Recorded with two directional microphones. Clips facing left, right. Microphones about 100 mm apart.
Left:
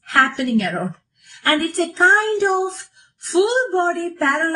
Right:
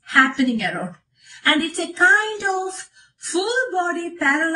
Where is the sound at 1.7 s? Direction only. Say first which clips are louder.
Left 4 dB; 35° left (ahead or behind).